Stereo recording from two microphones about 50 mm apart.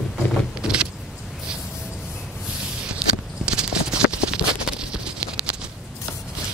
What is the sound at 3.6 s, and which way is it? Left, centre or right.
Clip-clop, centre.